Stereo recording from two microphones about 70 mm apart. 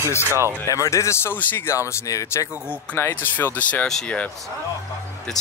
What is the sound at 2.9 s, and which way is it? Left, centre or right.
Speech, left.